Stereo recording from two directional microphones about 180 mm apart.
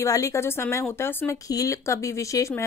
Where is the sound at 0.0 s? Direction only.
15° left (ahead or behind).